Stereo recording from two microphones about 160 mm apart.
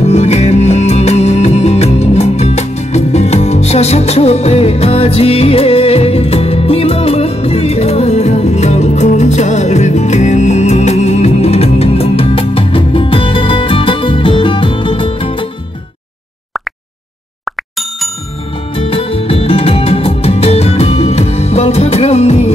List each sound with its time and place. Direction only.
0.0 s music: 45° left (ahead or behind)
18.8 s music: 35° left (ahead or behind)